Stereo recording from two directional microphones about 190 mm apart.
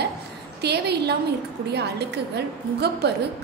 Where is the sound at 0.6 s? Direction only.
60° right (ahead or behind).